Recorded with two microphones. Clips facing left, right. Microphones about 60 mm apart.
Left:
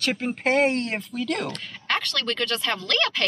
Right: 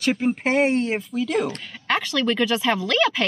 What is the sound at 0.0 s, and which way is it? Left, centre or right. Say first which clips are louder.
Speech: right 4 dB; centre.